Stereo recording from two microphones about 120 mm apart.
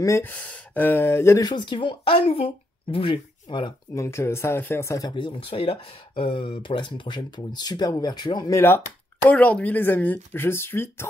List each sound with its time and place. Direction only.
0.0 s speech: 20° left (ahead or behind)
1.4 s speech: 40° left (ahead or behind)
3.9 s speech: 25° left (ahead or behind)
5.1 s speech: 45° left (ahead or behind)
8.5 s speech: 20° left (ahead or behind)